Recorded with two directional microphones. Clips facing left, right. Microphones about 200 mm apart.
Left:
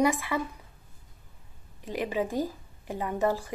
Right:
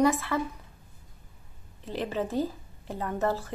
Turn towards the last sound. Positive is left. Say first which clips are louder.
# left 1 dB
turn(degrees=15)  # may be behind; listen again after turning